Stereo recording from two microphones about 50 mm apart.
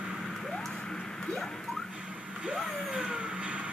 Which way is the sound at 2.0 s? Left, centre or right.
Centre.